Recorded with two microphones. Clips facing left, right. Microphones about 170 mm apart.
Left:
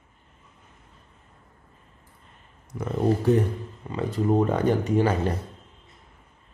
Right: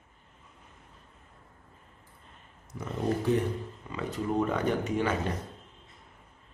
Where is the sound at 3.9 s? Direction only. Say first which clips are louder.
Left 7 dB; 35° left (ahead or behind).